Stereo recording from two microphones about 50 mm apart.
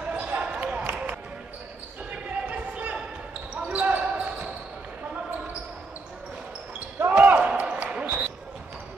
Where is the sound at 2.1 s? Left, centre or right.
Right.